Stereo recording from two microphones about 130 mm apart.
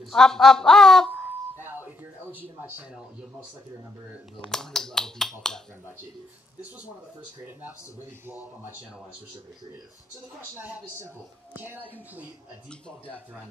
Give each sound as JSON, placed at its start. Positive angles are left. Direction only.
{"t": 0.1, "sound": "speech", "side_deg": 5}
{"t": 1.6, "sound": "music", "side_deg": -15}
{"t": 4.5, "sound": "speech", "side_deg": 5}
{"t": 10.6, "sound": "a man's voice", "side_deg": -15}